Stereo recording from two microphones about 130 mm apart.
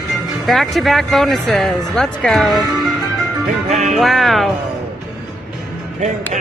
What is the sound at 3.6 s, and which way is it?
Music, 60° right (ahead or behind).